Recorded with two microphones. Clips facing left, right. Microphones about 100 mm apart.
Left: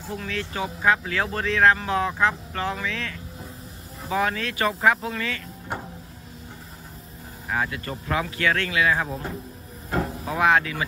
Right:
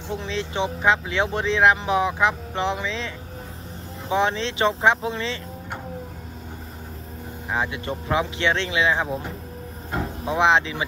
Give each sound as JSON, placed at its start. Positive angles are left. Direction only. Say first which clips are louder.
{"t": 0.1, "sound": "speech", "louder": "right 3 dB", "side_deg": -25}
{"t": 4.1, "sound": "speech", "louder": "right 3 dB", "side_deg": -25}
{"t": 7.5, "sound": "speech", "louder": "right 1 dB", "side_deg": -20}
{"t": 10.2, "sound": "speech", "louder": "right 2 dB", "side_deg": -20}